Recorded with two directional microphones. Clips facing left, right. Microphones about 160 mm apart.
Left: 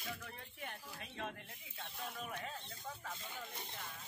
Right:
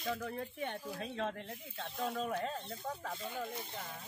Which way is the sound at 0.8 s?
55° right (ahead or behind).